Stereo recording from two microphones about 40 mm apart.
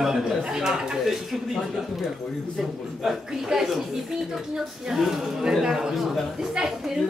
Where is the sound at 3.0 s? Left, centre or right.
Centre.